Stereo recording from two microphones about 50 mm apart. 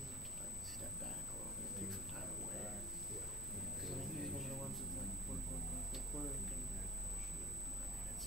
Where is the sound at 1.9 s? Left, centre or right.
Centre.